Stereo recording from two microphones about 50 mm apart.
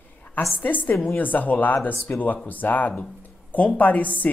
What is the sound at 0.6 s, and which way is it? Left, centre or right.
Speech, left.